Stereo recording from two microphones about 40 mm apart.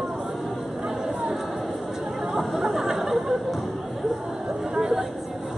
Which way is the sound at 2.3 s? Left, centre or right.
Centre.